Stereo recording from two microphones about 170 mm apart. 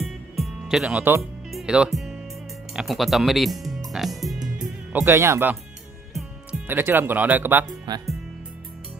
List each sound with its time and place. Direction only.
0.0 s music: centre (ahead or behind)
1.5 s speech: 5° right (ahead or behind)
4.6 s speech: 10° right (ahead or behind)
6.7 s speech: 10° right (ahead or behind)
7.6 s speech: 25° right (ahead or behind)